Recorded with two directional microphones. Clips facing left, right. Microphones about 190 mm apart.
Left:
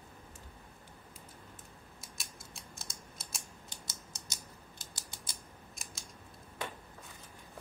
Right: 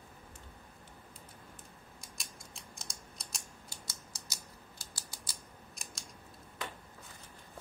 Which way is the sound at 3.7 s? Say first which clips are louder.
Even; 20° left (ahead or behind).